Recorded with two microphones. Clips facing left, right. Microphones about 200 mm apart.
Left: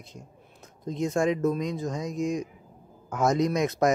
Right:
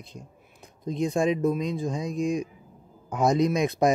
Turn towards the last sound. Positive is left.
turn(degrees=-15)  # may be behind; listen again after turning